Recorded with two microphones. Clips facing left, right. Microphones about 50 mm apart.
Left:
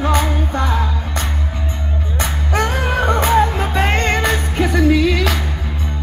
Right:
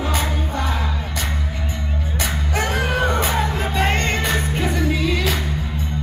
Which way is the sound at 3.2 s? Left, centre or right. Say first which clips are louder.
Left 6 dB; left.